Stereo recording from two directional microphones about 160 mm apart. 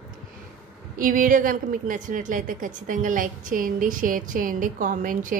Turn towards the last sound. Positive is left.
turn(degrees=-55)  # may be behind; listen again after turning